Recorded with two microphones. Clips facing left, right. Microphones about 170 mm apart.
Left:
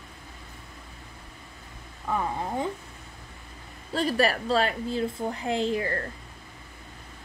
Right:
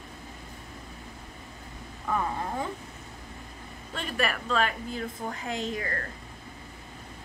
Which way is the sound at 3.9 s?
35° left (ahead or behind).